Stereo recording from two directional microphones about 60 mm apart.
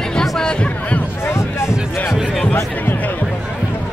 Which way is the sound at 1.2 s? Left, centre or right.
Left.